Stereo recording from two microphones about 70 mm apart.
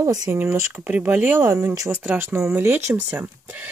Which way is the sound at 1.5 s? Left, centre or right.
Right.